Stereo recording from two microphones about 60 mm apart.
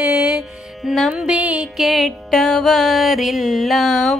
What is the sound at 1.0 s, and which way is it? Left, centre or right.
Music, centre.